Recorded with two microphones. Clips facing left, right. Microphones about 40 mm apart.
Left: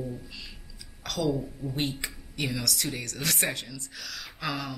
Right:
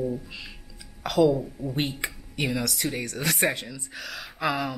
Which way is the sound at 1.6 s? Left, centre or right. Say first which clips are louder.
Right 3 dB; centre.